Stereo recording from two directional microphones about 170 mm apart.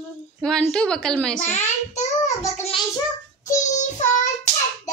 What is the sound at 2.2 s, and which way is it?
Speech, 15° left (ahead or behind).